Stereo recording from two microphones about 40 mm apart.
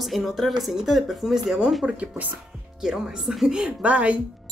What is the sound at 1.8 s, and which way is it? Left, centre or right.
Speech, right.